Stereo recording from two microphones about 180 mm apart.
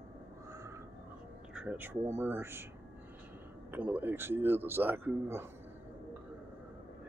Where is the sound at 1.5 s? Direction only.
5° right (ahead or behind).